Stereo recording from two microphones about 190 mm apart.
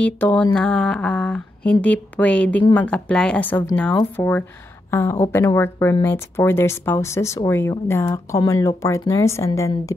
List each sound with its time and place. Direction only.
0.0 s speech: 5° left (ahead or behind)